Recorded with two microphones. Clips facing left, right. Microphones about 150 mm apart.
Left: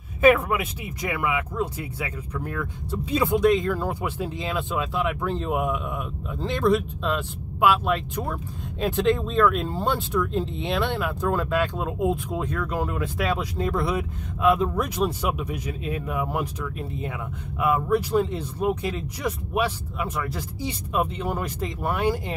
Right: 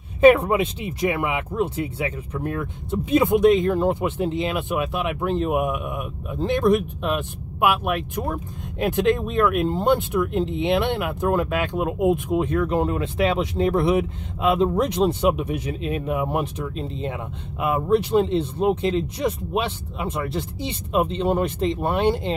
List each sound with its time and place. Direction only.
0.2 s speech: 30° right (ahead or behind)